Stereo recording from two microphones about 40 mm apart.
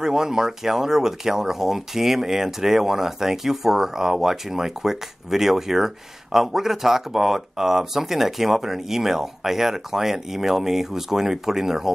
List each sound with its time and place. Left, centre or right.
0.0 s speech: centre